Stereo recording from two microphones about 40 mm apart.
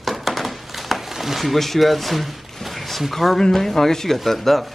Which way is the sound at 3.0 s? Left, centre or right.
Centre.